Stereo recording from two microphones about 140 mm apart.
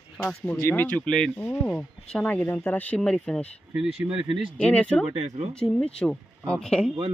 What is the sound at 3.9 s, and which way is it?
Speech, 40° right (ahead or behind).